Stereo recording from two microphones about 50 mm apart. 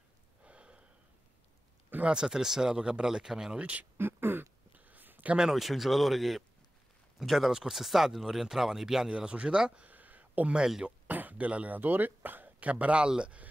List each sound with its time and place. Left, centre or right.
0.4 s gasp: right
2.0 s speech: centre
3.5 s speech: right
4.0 s a sound: right
5.5 s speech: centre; by 10.5 s right
11.1 s a sound: right
11.8 s speech: right